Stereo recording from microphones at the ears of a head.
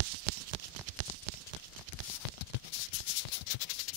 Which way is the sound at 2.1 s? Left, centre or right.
Left.